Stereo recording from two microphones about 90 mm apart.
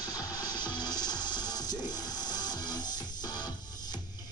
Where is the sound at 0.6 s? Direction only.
55° left (ahead or behind).